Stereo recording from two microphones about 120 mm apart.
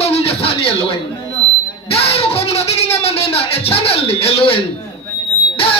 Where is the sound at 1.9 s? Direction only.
55° left (ahead or behind).